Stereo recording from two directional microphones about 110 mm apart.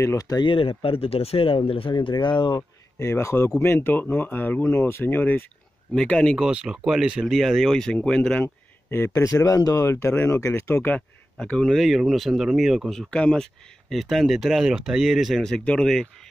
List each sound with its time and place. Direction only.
0.0 s speech: 30° left (ahead or behind)
0.5 s speech: 55° left (ahead or behind)
3.0 s speech: 25° left (ahead or behind)
5.9 s speech: 5° left (ahead or behind)
6.3 s speech: 5° right (ahead or behind); by 8.5 s 10° left (ahead or behind)
8.9 s speech: 25° left (ahead or behind)
11.3 s speech: 5° left (ahead or behind)